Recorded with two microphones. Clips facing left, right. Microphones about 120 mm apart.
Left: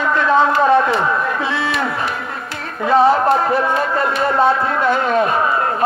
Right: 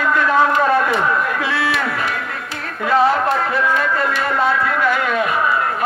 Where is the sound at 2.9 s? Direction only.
30° left (ahead or behind).